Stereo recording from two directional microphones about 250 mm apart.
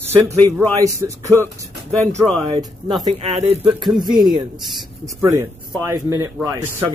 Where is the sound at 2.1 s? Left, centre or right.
Centre.